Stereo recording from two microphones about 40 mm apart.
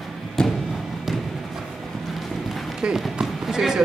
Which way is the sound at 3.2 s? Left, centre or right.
Centre.